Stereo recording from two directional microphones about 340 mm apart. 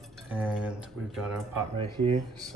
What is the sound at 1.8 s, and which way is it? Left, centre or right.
Speech, centre.